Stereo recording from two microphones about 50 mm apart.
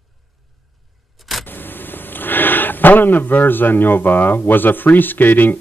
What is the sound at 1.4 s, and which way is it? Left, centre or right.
Speech, left.